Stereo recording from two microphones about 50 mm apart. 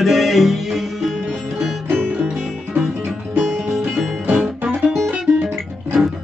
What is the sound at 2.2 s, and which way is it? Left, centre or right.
Music, centre.